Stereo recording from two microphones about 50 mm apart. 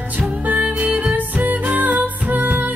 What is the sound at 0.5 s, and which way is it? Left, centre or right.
Music, right.